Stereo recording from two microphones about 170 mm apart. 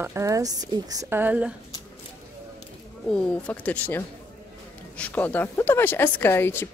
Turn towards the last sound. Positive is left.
turn(degrees=15)  # may be behind; listen again after turning